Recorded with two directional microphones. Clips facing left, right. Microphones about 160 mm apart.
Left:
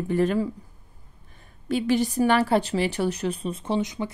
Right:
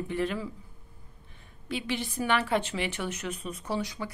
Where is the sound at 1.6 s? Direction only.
40° left (ahead or behind).